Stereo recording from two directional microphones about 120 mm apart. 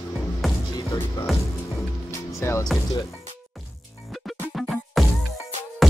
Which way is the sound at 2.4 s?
25° left (ahead or behind).